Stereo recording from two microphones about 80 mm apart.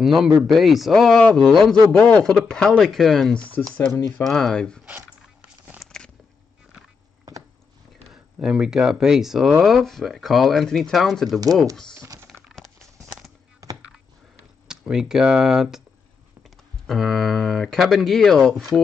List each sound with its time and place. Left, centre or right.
0.0 s speech: centre
3.7 s speech: centre
4.3 s speech: centre
5.8 s a sound: centre
7.3 s biting: right
8.1 s speech: centre
11.9 s typing: right
13.6 s a sound: right
14.7 s speech: centre